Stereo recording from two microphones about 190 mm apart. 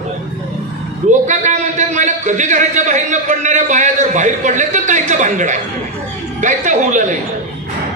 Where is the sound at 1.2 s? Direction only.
40° right (ahead or behind).